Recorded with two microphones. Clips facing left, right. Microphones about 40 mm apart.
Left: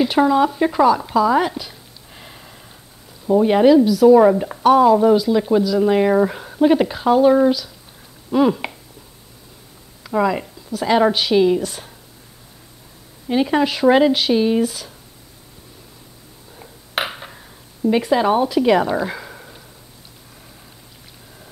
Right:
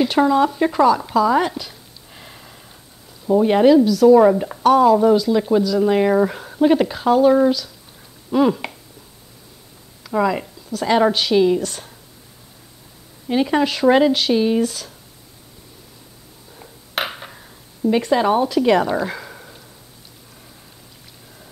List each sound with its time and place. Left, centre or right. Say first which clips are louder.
0.0 s speech: even; centre
10.0 s a woman's voice: even; centre
13.3 s a woman's voice: even; centre
16.5 s dishes: left 1 dB; centre